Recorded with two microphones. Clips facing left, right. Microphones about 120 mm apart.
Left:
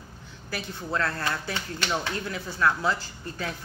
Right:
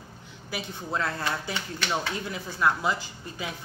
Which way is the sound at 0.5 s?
15° right (ahead or behind).